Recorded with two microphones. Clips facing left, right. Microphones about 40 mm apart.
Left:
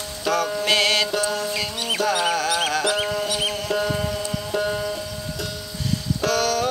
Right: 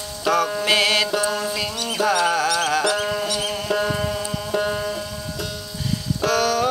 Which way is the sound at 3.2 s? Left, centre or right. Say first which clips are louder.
Even; centre.